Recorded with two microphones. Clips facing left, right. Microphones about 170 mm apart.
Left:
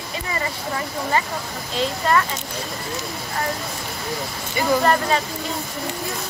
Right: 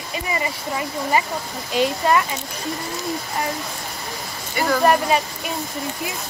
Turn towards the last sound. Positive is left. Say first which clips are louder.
# right 2 dB
turn(degrees=-15)  # may be behind; listen again after turning